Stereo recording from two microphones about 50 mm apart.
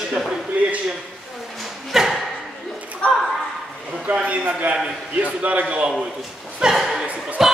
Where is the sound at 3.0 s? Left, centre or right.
Left.